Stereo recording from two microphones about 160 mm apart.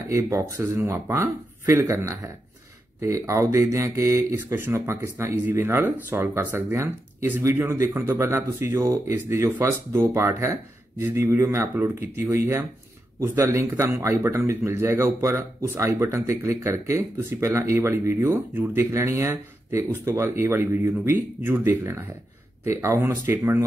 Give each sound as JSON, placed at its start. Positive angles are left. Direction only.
{"t": 0.1, "sound": "speech", "side_deg": -20}